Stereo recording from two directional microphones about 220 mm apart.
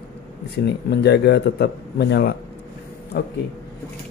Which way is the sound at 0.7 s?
50° left (ahead or behind).